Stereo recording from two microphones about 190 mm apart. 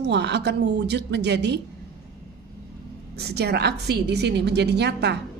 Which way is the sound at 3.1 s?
60° right (ahead or behind).